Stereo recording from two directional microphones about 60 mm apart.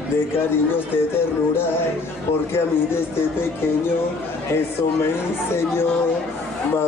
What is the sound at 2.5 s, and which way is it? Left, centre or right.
Speech, left.